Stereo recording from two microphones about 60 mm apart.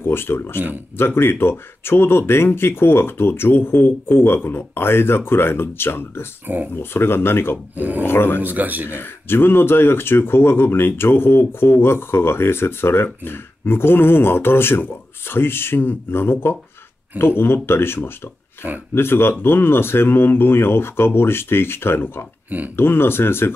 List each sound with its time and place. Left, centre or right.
0.0 s speech: left
6.4 s speech: right
6.7 s speech: left
7.7 s speech: right
8.0 s speech: left
8.4 s speech: right
8.8 s speech: left